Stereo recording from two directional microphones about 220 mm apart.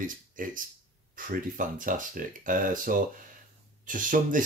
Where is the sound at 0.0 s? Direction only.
40° right (ahead or behind).